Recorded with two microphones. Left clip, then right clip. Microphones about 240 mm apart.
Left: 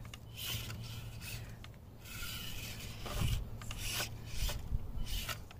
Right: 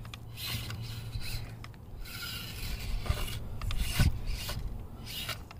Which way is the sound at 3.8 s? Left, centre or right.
Centre.